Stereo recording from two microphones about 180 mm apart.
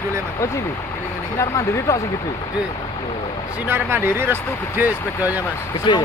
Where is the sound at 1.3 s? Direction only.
15° left (ahead or behind).